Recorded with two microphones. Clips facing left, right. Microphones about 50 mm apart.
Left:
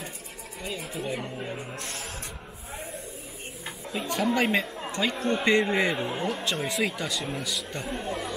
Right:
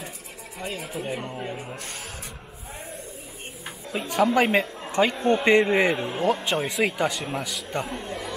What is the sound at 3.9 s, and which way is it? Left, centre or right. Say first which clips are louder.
Speech: right 5 dB; centre.